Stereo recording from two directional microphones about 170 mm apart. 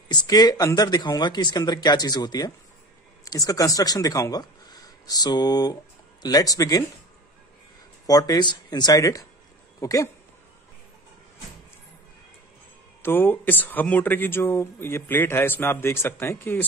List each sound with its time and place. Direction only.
0.1 s speech: 25° left (ahead or behind)
8.1 s speech: 20° left (ahead or behind)
13.0 s speech: 10° left (ahead or behind)